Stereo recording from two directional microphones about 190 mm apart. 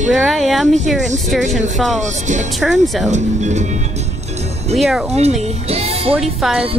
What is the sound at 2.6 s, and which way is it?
Speech, centre (ahead or behind).